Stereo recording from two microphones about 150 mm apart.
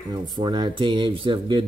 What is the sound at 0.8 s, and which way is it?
Speech, 30° right (ahead or behind).